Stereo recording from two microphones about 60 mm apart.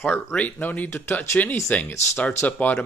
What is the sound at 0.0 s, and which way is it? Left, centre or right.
Speech, left.